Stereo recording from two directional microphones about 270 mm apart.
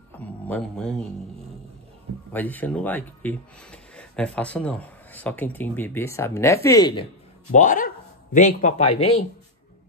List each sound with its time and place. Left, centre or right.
0.1 s music: centre
2.3 s speech: centre
7.5 s speech: left